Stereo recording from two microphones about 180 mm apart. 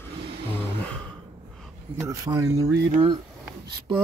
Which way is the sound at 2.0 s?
20° right (ahead or behind).